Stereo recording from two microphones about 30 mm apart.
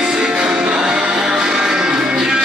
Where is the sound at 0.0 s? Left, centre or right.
Right.